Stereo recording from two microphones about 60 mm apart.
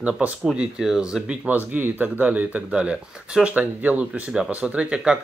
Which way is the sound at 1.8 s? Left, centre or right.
Right.